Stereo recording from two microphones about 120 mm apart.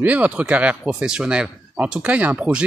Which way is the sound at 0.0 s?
10° right (ahead or behind).